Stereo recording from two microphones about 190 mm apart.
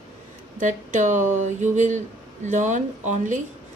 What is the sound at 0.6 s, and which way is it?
Speech, 40° right (ahead or behind).